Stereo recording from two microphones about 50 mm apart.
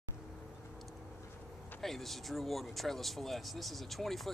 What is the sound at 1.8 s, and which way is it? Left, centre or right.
Speech, centre.